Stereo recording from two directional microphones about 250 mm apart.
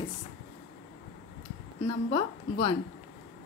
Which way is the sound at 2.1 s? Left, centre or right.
Left.